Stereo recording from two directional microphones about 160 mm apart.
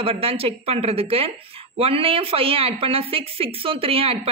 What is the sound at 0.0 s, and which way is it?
Speech, 35° right (ahead or behind).